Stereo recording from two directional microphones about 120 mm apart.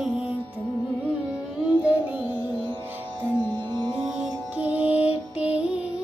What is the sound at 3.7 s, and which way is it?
Music, 40° right (ahead or behind).